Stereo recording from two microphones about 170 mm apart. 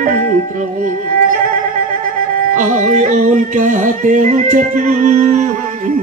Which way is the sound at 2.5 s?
45° right (ahead or behind).